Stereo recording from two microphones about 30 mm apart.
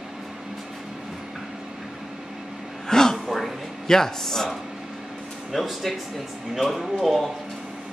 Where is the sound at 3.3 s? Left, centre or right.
Centre.